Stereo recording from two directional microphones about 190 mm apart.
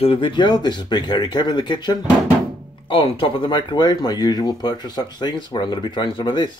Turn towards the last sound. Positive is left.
turn(degrees=25)  # may be behind; listen again after turning